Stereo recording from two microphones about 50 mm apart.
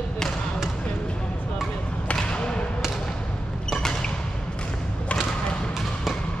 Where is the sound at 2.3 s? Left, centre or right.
Centre.